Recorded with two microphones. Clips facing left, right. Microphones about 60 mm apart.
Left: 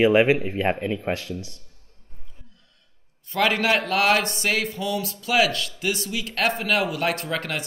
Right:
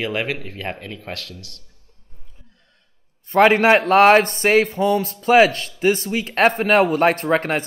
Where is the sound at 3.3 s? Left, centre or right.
Right.